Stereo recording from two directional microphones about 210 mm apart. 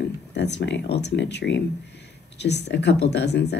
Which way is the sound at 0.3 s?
55° left (ahead or behind).